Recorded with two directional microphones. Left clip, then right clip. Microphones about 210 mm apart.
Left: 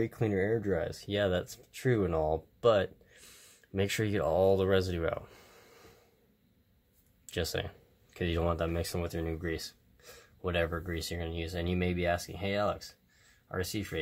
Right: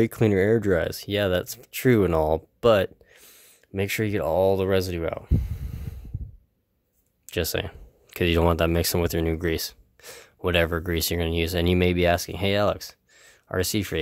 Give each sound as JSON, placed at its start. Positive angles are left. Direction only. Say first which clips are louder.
{"t": 0.0, "sound": "speech", "louder": "right 10 dB", "side_deg": -45}
{"t": 3.2, "sound": "speech", "louder": "right 3 dB", "side_deg": -20}
{"t": 7.2, "sound": "speech", "louder": "right 7 dB", "side_deg": -35}